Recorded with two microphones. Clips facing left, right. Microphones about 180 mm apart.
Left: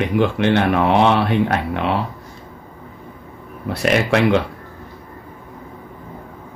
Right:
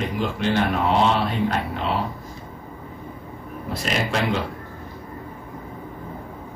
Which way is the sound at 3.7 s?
65° left (ahead or behind).